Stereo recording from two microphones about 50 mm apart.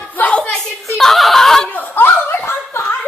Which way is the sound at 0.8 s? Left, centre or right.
Centre.